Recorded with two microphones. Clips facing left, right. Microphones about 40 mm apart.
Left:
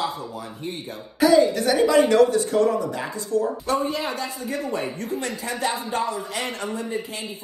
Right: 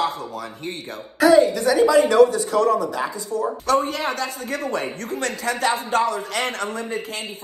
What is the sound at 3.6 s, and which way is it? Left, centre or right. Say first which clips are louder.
Speech: right 3 dB; right.